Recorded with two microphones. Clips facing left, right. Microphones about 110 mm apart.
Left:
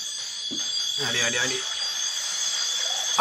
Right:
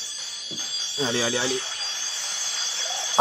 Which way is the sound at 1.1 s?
25° right (ahead or behind).